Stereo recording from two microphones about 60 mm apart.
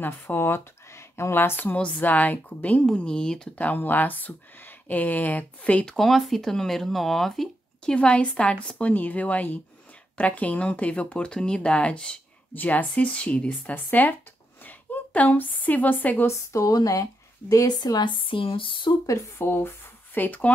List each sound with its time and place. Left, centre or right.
0.0 s speech: left
1.3 s speech: left
3.1 s a woman's voice: centre
3.5 s speech: left
5.9 s speech: centre
7.8 s a woman's voice: centre
16.3 s speech: left
18.9 s speech: left
19.3 s speech: left
20.2 s speech: left